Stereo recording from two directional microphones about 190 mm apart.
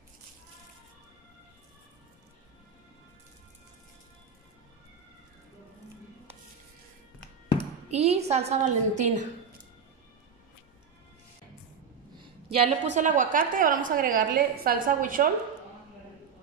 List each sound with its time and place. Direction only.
7.9 s a woman's voice: 35° right (ahead or behind)
12.2 s a woman's voice: 30° right (ahead or behind); by 15.2 s 45° right (ahead or behind)